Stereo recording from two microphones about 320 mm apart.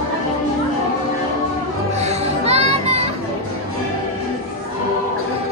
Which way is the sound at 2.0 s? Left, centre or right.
Centre.